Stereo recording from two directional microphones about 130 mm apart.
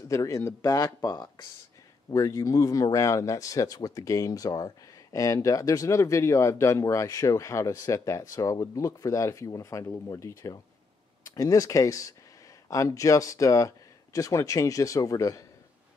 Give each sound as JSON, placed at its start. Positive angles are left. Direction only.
{"t": 0.1, "sound": "speech", "side_deg": 25}